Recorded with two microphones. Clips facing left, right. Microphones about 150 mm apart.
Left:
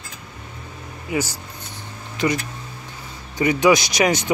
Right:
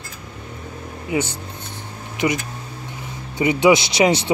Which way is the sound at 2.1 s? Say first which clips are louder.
Even; 20° right (ahead or behind).